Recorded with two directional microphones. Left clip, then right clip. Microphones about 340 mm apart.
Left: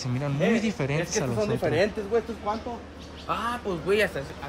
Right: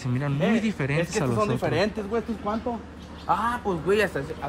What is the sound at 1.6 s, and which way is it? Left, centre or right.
Speech, centre.